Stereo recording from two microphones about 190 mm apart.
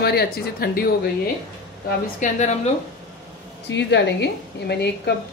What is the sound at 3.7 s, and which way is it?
Speech, 65° left (ahead or behind).